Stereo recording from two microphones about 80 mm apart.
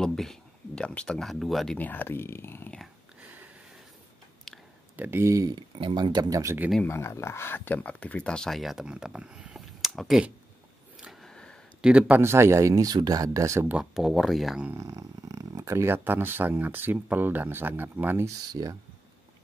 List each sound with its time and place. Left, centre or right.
0.0 s speech: centre
1.8 s speech: left
4.9 s speech: right
5.2 s speech: right
5.5 s speech: right
6.3 s speech: right
6.9 s speech: left; by 8.8 s centre
8.8 s speech: centre
11.0 s a sound: centre
12.1 s speech: right
13.9 s speech: centre
14.8 s speech: right
18.5 s speech: right